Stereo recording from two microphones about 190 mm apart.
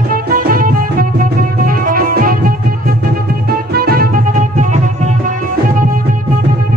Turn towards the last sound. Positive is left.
turn(degrees=-40)  # may be behind; listen again after turning